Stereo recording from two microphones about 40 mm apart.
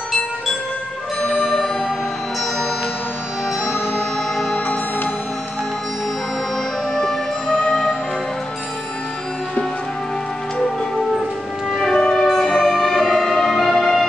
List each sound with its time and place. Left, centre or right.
1.3 s music: centre
3.9 s music: centre
4.6 s music: left
6.9 s music: centre
11.7 s music: centre
12.0 s music: centre